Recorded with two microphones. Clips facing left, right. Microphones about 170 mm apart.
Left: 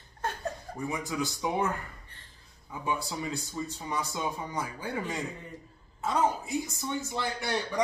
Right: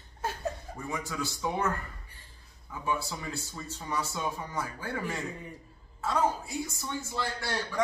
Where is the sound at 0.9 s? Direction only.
20° left (ahead or behind).